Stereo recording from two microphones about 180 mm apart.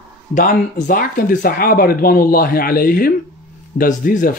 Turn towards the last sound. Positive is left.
turn(degrees=50)  # may be behind; listen again after turning